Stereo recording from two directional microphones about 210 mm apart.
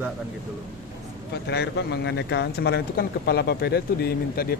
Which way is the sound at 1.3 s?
55° left (ahead or behind).